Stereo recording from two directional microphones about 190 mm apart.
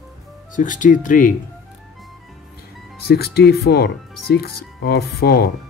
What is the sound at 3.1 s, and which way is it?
Speech, 55° left (ahead or behind).